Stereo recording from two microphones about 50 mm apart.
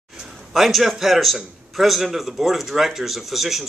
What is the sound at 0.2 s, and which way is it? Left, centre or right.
A man's voice, centre.